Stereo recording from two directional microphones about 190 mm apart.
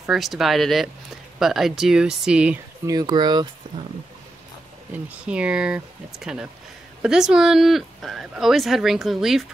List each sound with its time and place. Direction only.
0.0 s speech: centre (ahead or behind)
2.9 s speech: 20° right (ahead or behind)
4.9 s speech: 5° right (ahead or behind)